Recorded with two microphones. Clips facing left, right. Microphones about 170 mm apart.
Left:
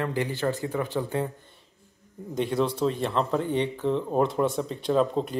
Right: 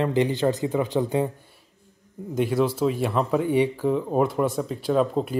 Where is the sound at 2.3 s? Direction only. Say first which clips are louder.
Right 3 dB; 5° right (ahead or behind).